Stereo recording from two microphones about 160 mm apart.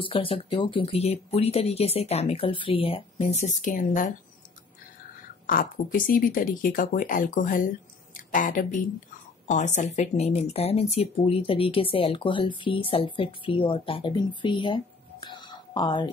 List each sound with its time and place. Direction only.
0.0 s speech: 35° left (ahead or behind); by 4.1 s 55° left (ahead or behind)
5.5 s a woman's voice: 60° left (ahead or behind); by 16.1 s 30° left (ahead or behind)